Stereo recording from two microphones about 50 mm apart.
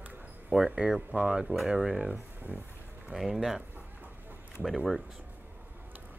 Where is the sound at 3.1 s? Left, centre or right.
Centre.